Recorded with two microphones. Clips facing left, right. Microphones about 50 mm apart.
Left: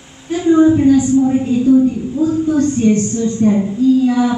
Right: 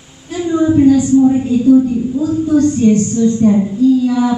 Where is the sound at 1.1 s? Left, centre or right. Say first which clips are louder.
Right 2 dB; centre.